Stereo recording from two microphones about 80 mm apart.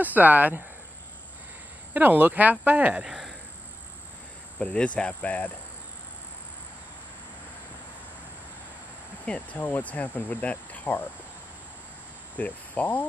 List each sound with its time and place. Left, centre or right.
0.0 s speech: right
2.0 s speech: right
3.0 s a sound: centre
4.6 s speech: centre
9.2 s speech: centre
12.4 s speech: centre